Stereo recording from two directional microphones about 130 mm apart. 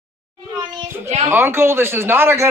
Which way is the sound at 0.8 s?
20° right (ahead or behind).